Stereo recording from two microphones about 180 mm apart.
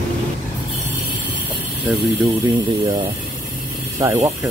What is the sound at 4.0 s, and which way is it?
Speech, 15° right (ahead or behind).